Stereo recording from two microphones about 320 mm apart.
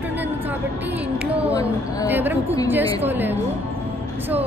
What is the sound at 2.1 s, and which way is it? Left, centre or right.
A woman's voice, centre.